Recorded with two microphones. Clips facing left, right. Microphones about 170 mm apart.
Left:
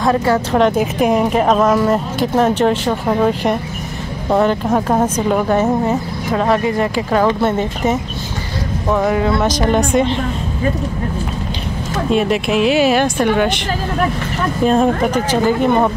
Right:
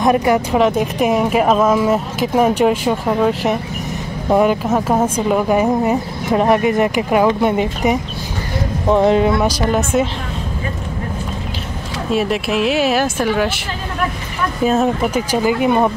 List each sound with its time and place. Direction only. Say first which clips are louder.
0.0 s speech: right 1 dB; 15° right (ahead or behind)
0.6 s speech: left 1 dB; centre (ahead or behind); by 9.4 s 20° right (ahead or behind)
9.4 s speech: left 2 dB; 5° right (ahead or behind)
12.1 s speech: left 2 dB; centre (ahead or behind)
14.6 s speech: left 2 dB; 5° right (ahead or behind)